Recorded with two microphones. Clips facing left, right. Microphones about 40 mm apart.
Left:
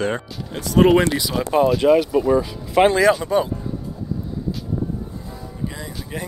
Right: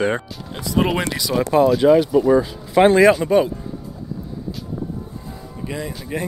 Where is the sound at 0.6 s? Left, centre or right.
Left.